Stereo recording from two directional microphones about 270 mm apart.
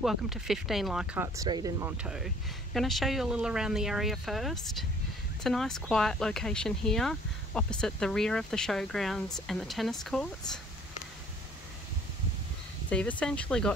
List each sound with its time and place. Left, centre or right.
0.0 s speech: centre
12.9 s speech: centre